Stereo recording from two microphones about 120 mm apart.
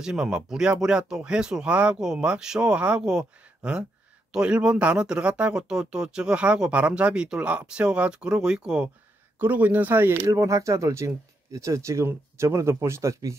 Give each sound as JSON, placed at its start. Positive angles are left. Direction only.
{"t": 0.0, "sound": "speech", "side_deg": -5}